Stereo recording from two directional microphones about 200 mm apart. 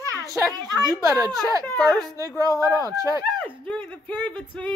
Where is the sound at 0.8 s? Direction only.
15° right (ahead or behind).